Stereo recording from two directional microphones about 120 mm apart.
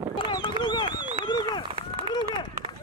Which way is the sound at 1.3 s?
40° left (ahead or behind).